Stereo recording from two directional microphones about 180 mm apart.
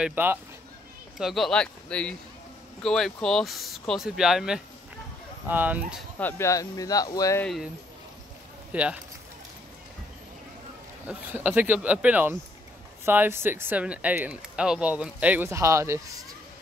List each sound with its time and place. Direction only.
0.0 s speech: 10° right (ahead or behind)
1.1 s speech: centre (ahead or behind)
6.1 s speech: 10° left (ahead or behind)
7.4 s speech: centre (ahead or behind)
8.7 s speech: 5° right (ahead or behind)
11.1 s speech: 10° right (ahead or behind)